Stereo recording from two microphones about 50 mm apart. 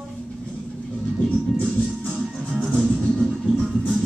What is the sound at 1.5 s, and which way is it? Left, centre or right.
Music, centre.